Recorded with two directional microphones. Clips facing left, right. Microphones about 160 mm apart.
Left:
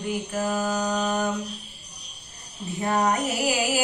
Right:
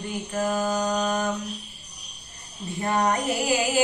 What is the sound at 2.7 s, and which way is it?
Female singing, 10° left (ahead or behind).